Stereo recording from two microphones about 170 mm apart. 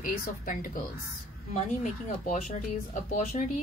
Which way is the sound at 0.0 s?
55° left (ahead or behind).